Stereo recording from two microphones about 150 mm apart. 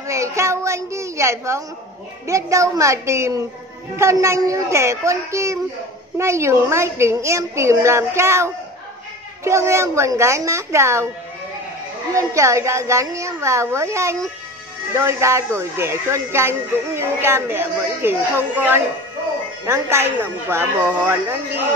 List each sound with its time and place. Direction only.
0.0 s a child's voice: 20° right (ahead or behind)
12.1 s a woman's voice: 20° right (ahead or behind)